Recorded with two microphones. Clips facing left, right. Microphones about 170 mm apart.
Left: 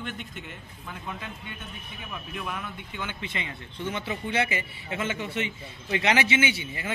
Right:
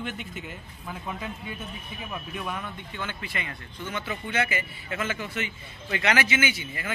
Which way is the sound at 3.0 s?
20° left (ahead or behind).